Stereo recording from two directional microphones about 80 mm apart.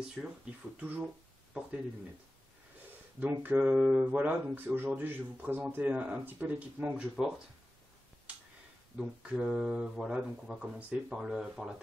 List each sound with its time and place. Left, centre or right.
0.2 s speech: centre
0.7 s speech: right
1.0 s a sound: centre
3.2 s speech: right
8.9 s speech: centre